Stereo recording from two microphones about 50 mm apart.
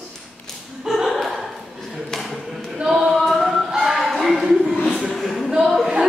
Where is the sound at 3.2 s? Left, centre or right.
Centre.